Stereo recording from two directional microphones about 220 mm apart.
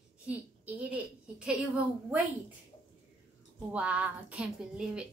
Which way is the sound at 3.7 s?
5° right (ahead or behind).